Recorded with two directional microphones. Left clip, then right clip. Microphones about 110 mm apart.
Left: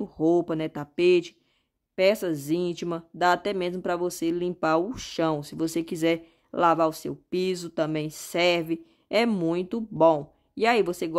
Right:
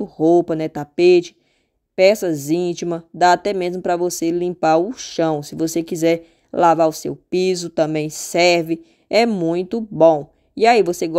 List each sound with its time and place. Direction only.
0.0 s speech: 25° right (ahead or behind)